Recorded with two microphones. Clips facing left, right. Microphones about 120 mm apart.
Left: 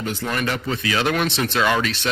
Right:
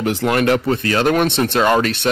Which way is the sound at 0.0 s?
90° right.